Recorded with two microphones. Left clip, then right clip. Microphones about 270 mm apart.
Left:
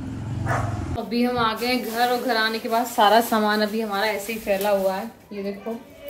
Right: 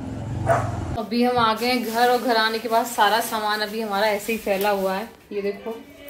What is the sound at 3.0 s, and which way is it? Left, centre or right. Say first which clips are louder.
Speech: left 7 dB; left.